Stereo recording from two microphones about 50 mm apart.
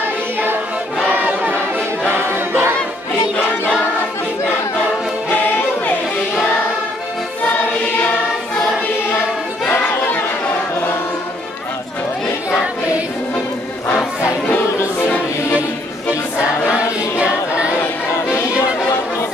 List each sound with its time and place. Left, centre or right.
1.1 s a sound: right
2.1 s choir: right
9.7 s chatter: left
16.3 s choir: right